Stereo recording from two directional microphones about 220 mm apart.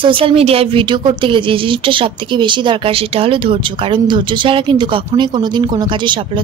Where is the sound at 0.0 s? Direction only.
25° right (ahead or behind).